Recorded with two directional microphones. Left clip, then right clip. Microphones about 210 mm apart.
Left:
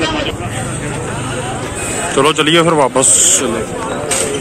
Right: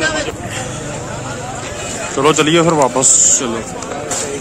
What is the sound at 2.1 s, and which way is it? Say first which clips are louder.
A man's voice: left 1 dB; 5° right (ahead or behind).